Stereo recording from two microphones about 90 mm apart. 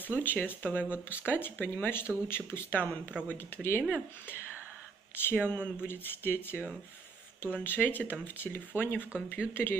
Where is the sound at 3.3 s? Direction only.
25° left (ahead or behind).